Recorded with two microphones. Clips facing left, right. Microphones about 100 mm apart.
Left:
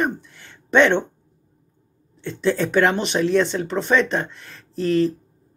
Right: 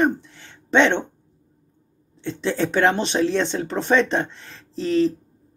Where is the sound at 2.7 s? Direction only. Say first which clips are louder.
Right 2 dB; 30° right (ahead or behind).